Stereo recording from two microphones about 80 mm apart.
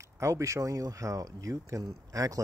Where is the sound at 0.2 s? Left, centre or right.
Right.